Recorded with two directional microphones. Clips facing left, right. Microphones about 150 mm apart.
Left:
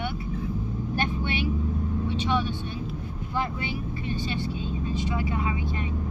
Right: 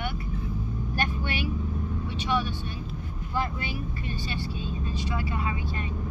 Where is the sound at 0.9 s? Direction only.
20° left (ahead or behind).